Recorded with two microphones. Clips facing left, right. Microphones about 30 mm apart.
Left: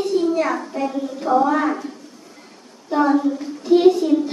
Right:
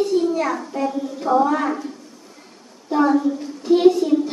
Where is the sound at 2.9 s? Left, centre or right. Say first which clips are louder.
Even; centre.